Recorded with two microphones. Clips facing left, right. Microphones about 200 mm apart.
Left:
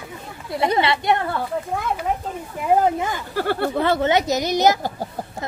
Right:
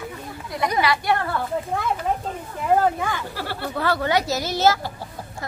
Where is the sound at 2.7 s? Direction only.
20° left (ahead or behind).